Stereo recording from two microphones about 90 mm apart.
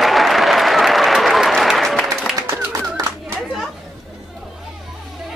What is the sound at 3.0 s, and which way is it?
Clapping, 45° right (ahead or behind).